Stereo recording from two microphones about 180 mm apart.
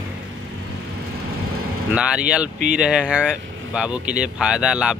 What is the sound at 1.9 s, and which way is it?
Speech, 5° right (ahead or behind).